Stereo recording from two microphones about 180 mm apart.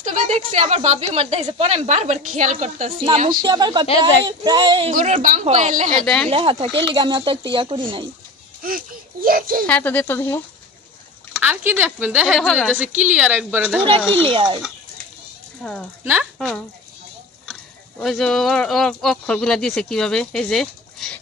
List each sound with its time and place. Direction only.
0.0 s speech: 40° right (ahead or behind)
3.2 s speech: 50° right (ahead or behind)
3.4 s speech: 25° right (ahead or behind)
4.9 s speech: 40° right (ahead or behind)
6.0 s a woman's voice: 5° left (ahead or behind)
6.3 s speech: 30° right (ahead or behind)
8.6 s speech: 50° right (ahead or behind)
9.7 s speech: 10° left (ahead or behind)
11.3 s speech: 10° right (ahead or behind)
12.4 s a woman's voice: 5° left (ahead or behind)
13.1 s speech: 10° right (ahead or behind)
14.3 s speech: 30° right (ahead or behind)
16.0 s speech: 10° right (ahead or behind)
16.3 s speech: 5° left (ahead or behind)